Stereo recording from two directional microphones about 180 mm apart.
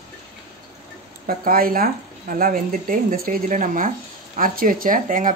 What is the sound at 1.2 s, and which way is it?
Speech, 50° right (ahead or behind).